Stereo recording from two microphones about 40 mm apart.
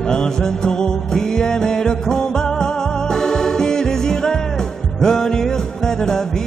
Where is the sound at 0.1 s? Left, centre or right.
Centre.